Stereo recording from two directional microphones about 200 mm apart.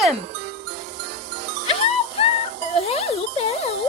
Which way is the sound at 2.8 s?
30° left (ahead or behind).